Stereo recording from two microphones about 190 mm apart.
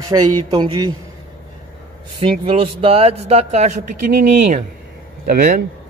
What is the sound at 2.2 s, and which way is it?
A man's voice, 30° right (ahead or behind).